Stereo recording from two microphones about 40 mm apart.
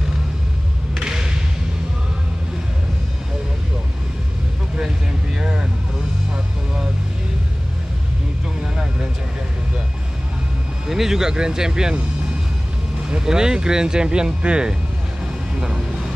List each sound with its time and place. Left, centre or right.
0.9 s thump: centre
5.4 s music: centre
6.3 s vehicle: centre
10.9 s speech: centre
13.1 s speech: centre